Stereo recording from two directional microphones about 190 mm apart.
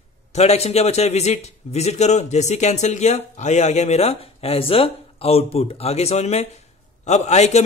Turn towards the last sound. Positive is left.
turn(degrees=35)  # may be behind; listen again after turning